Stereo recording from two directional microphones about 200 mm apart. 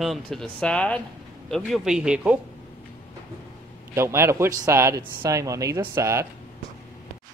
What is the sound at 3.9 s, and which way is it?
Speech, 15° right (ahead or behind).